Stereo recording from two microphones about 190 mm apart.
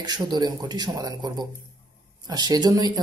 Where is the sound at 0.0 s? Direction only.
20° right (ahead or behind).